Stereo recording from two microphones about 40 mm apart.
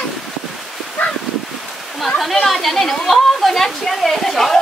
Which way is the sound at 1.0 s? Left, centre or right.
Left.